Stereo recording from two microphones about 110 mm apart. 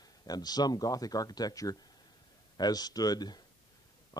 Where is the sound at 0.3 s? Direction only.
35° left (ahead or behind).